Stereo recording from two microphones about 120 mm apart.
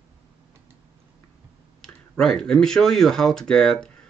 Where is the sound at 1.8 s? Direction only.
5° left (ahead or behind).